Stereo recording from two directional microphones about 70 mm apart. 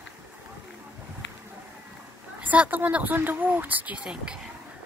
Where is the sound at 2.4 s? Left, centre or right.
Right.